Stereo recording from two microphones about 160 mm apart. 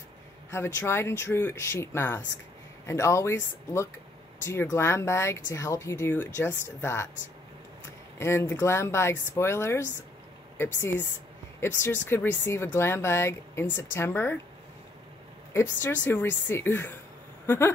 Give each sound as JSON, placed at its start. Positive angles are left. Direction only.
{"t": 0.5, "sound": "speech", "side_deg": 15}
{"t": 8.2, "sound": "speech", "side_deg": 15}
{"t": 15.5, "sound": "speech", "side_deg": 15}